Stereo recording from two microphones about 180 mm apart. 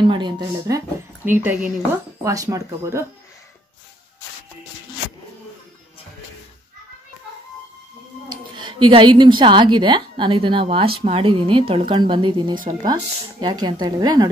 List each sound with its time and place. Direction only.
0.0 s a woman's voice: 25° right (ahead or behind)
8.3 s a woman's voice: 25° right (ahead or behind)